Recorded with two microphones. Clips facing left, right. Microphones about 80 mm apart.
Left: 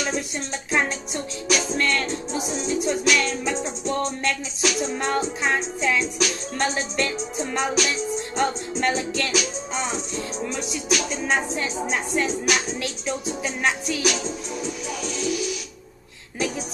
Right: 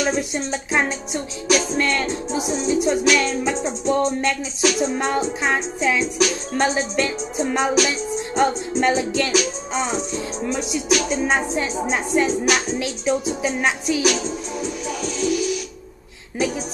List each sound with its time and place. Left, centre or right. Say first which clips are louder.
0.0 s music: right 5 dB; centre
11.1 s music: right 4 dB; centre